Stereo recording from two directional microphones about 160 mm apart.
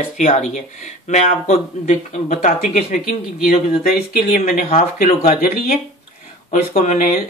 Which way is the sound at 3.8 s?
65° left (ahead or behind).